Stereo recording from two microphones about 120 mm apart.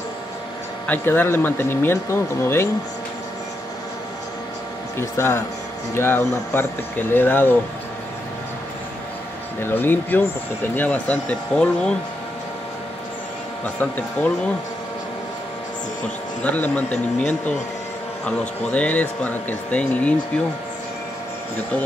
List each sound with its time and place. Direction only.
0.8 s speech: 15° left (ahead or behind)
4.9 s speech: 20° left (ahead or behind)
9.6 s speech: 15° left (ahead or behind)
16.4 s speech: 15° left (ahead or behind)
16.9 s speech: 80° left
18.2 s speech: 10° left (ahead or behind)